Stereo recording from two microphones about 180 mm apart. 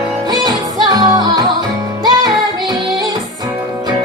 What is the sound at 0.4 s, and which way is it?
Music, 25° right (ahead or behind).